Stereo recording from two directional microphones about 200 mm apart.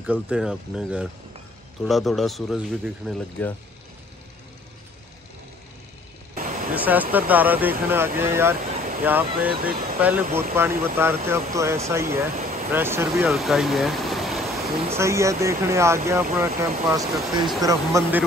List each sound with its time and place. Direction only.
0.0 s speech: 5° right (ahead or behind)
6.3 s vehicle: 40° right (ahead or behind)
6.7 s speech: 10° right (ahead or behind)
9.5 s speech: 45° right (ahead or behind)
9.9 s speech: 10° right (ahead or behind)
13.3 s a sound: centre (ahead or behind)
15.0 s speech: 15° right (ahead or behind)